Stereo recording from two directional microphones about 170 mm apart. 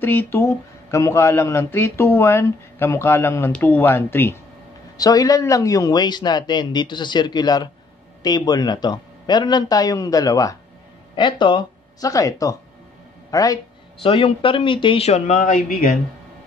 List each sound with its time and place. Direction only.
0.0 s a man's voice: 10° left (ahead or behind)
14.0 s speech: 35° left (ahead or behind); by 15.9 s 50° left (ahead or behind)